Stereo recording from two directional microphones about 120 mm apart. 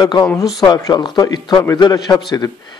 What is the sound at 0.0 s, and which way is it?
A man's voice, 35° left (ahead or behind).